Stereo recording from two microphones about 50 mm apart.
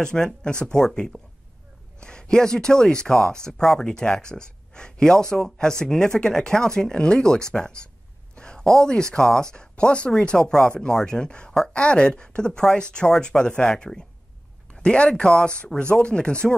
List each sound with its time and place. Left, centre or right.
0.0 s speech: centre
8.4 s a sound: centre
9.1 s speech: centre